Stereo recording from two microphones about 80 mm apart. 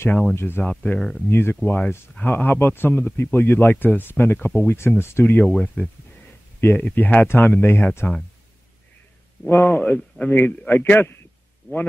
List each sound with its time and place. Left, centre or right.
0.2 s speech: left
0.7 s speech: centre
1.3 s speech: left
1.6 s speech: centre
5.4 s speech: centre
6.6 s speech: left
8.0 s speech: centre
9.5 s speech: left